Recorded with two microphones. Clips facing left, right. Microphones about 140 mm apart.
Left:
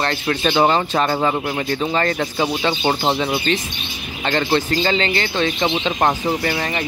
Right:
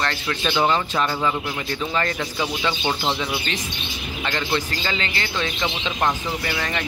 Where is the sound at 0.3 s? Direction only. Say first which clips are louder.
Left 5 dB; 45° left (ahead or behind).